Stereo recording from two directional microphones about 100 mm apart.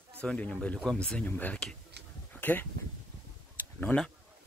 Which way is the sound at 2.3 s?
15° left (ahead or behind).